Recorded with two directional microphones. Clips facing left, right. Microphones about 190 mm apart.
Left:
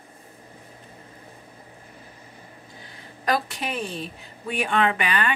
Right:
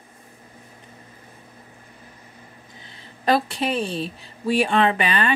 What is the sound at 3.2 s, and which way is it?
A woman's voice, 30° right (ahead or behind).